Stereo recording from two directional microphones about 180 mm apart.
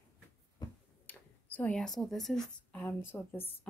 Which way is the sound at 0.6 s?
20° left (ahead or behind).